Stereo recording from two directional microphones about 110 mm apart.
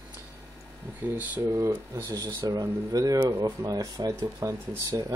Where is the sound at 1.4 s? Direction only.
30° right (ahead or behind).